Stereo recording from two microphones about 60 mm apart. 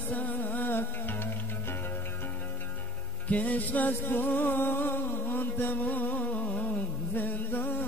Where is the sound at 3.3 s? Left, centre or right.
Left.